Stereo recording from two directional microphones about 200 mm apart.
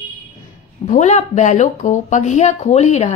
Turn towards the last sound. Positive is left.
turn(degrees=35)  # may be behind; listen again after turning